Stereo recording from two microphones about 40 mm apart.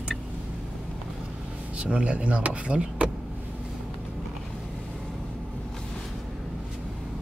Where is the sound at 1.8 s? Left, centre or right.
Right.